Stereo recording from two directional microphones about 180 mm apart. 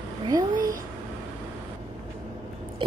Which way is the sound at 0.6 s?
50° right (ahead or behind).